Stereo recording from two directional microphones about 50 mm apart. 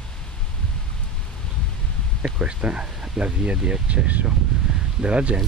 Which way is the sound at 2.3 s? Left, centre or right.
Centre.